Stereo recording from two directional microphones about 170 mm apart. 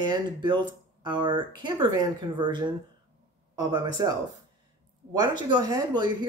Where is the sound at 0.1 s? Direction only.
25° right (ahead or behind).